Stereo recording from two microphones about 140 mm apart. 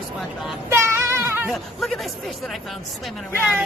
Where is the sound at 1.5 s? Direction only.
Centre (ahead or behind).